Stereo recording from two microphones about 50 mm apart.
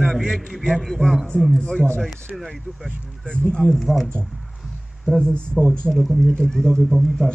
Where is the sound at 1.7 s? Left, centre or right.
Left.